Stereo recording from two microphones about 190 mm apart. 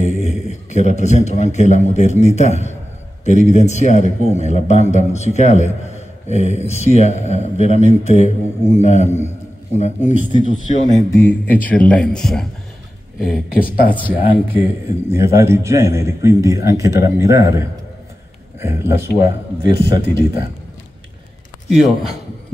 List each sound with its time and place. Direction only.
0.0 s a man's voice: 35° left (ahead or behind)
11.0 s speech: 15° left (ahead or behind)
13.5 s speech: 50° left (ahead or behind)
14.0 s speech: 10° right (ahead or behind)
19.6 s a man's voice: 25° right (ahead or behind)
21.6 s a man's voice: centre (ahead or behind)